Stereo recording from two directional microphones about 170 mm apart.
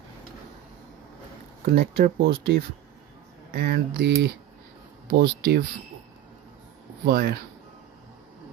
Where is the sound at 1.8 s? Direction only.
70° right (ahead or behind).